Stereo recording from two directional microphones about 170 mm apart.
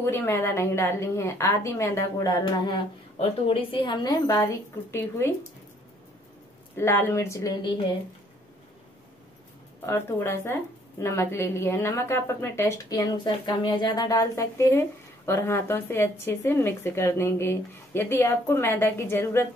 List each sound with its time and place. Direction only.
0.0 s a woman's voice: 15° left (ahead or behind)
3.2 s a woman's voice: 35° left (ahead or behind); by 5.3 s 15° left (ahead or behind)
6.8 s a woman's voice: 15° left (ahead or behind)
9.8 s a woman's voice: 15° left (ahead or behind)